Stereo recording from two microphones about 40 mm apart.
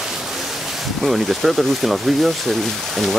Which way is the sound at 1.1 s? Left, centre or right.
Centre.